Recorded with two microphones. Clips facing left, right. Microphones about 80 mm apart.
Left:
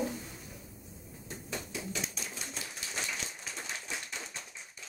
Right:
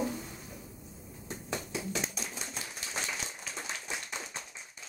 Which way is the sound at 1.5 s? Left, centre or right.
Right.